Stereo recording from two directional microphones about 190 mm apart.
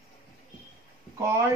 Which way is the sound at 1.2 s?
15° right (ahead or behind).